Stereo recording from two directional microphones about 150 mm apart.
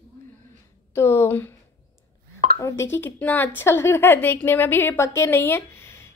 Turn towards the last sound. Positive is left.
turn(degrees=15)  # may be behind; listen again after turning